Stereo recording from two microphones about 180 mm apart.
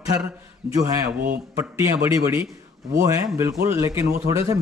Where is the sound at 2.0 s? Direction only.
15° right (ahead or behind).